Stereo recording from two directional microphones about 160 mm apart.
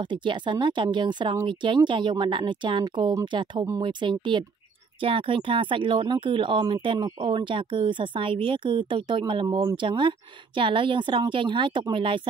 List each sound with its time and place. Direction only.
0.0 s speech: 30° right (ahead or behind)